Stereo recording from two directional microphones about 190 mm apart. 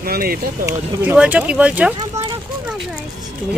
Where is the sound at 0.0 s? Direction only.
50° right (ahead or behind).